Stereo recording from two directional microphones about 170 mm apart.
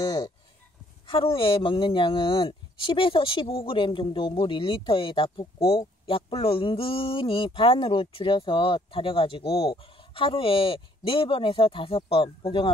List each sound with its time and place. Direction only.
0.0 s livestock: 20° left (ahead or behind)
1.0 s speech: 30° left (ahead or behind)